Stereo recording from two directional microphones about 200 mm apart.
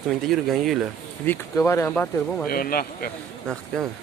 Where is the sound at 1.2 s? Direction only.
10° left (ahead or behind).